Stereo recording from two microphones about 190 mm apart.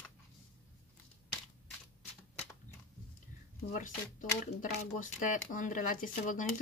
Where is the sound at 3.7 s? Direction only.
40° left (ahead or behind).